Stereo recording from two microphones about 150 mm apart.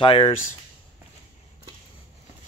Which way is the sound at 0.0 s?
40° left (ahead or behind).